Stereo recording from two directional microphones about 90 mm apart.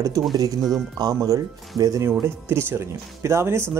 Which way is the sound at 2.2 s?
25° right (ahead or behind).